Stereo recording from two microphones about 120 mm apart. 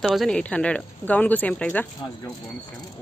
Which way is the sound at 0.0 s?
Centre (ahead or behind).